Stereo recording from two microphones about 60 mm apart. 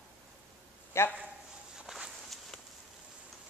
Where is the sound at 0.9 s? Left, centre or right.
Left.